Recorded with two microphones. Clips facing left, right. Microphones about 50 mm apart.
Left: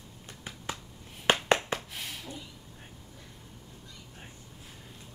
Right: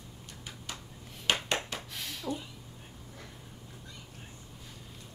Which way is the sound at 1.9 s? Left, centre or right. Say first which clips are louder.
Right 3 dB; centre.